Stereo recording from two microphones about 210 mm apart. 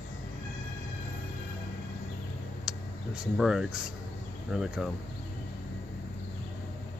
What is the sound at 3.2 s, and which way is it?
Speech, 5° right (ahead or behind).